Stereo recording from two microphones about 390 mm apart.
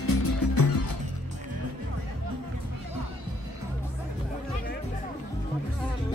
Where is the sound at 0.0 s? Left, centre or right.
Left.